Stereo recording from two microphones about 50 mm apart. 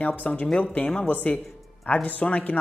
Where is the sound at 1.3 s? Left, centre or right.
Centre.